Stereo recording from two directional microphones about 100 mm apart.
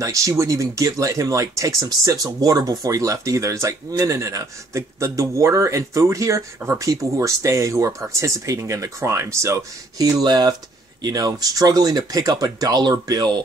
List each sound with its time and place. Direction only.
0.0 s speech: 35° right (ahead or behind)